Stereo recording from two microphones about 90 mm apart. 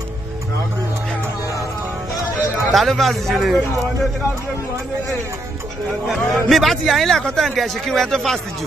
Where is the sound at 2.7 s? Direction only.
Centre (ahead or behind).